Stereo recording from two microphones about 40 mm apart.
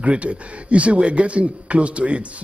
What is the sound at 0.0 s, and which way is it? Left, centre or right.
Speech, right.